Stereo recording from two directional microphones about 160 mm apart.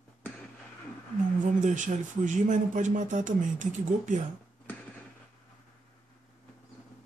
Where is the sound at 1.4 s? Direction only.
50° right (ahead or behind).